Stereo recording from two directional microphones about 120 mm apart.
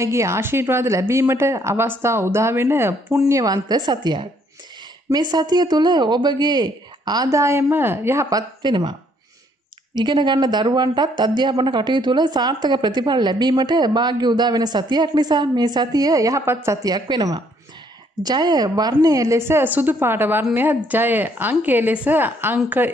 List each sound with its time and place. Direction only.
0.0 s a woman's voice: 25° right (ahead or behind)
9.9 s a woman's voice: 40° right (ahead or behind); by 22.6 s 15° right (ahead or behind)